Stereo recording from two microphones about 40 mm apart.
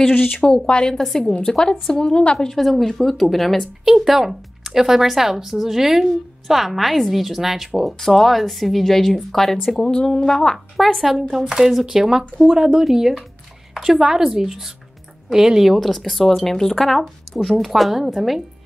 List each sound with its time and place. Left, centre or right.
0.1 s speech: left
0.4 s speech: centre
0.9 s speech: centre
1.4 s a woman's voice: centre
2.5 s speech: centre
10.8 s speech: centre
15.7 s speech: centre